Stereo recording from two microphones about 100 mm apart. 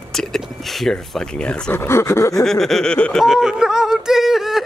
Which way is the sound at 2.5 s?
5° left (ahead or behind).